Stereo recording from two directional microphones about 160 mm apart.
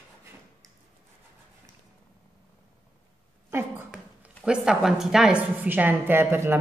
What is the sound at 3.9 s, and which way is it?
Speech, 5° right (ahead or behind).